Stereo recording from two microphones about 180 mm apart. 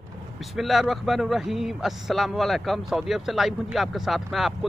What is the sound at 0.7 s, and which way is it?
Speech, centre (ahead or behind).